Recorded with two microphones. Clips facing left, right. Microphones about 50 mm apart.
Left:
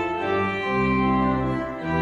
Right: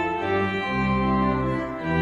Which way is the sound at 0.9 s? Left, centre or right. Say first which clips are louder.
Even; left.